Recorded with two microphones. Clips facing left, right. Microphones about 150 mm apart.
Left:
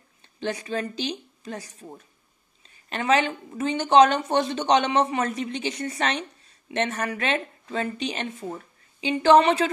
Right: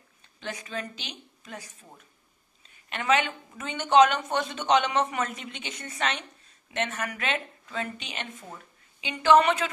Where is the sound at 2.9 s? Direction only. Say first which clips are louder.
Left 3 dB; 35° left (ahead or behind).